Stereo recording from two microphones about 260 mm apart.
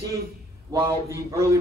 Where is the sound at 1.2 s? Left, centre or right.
Centre.